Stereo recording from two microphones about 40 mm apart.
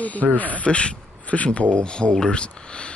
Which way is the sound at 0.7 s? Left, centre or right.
Left.